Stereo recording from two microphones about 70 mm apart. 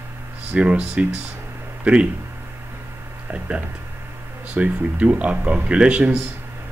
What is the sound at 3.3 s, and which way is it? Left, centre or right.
Speech, centre.